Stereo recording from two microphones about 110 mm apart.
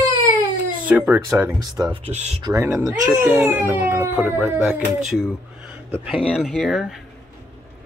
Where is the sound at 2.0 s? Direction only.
90° right.